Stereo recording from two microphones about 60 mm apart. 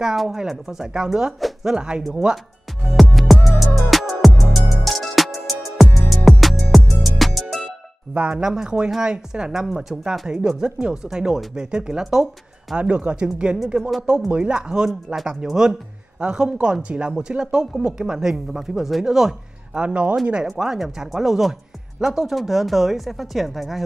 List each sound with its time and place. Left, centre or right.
0.0 s a woman's voice: centre
2.9 s music: centre
8.1 s speech: right
8.4 s a woman's voice: centre
12.7 s a woman's voice: right
15.4 s a woman's voice: centre
20.4 s a woman's voice: centre